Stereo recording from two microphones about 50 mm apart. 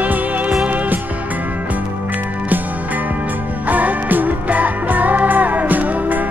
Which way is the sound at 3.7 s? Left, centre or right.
Right.